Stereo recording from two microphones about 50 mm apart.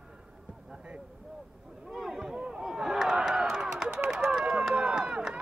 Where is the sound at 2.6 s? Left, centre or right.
Centre.